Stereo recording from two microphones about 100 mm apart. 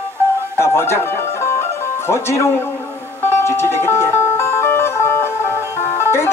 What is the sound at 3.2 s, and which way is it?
Speech, 25° left (ahead or behind).